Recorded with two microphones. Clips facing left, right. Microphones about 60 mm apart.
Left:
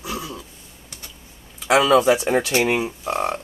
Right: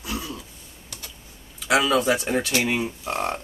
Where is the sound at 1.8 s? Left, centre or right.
Left.